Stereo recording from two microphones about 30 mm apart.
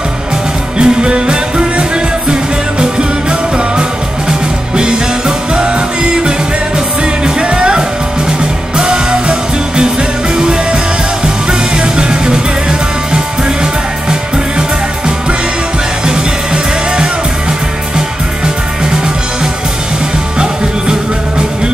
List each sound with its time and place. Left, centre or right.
0.7 s music: right
7.4 s music: right
16.1 s music: right